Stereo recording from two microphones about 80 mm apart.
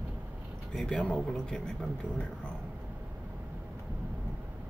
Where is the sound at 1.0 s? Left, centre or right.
Centre.